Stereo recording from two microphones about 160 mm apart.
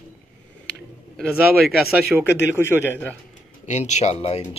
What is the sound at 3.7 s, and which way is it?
Speech, 45° left (ahead or behind).